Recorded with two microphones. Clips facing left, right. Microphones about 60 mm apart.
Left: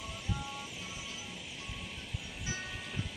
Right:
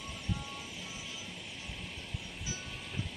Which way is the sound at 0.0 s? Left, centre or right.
Centre.